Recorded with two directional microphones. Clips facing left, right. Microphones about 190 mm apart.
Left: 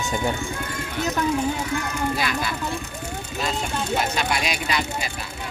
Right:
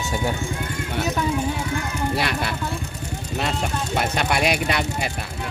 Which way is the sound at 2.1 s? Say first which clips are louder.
Right 2 dB; 65° right (ahead or behind).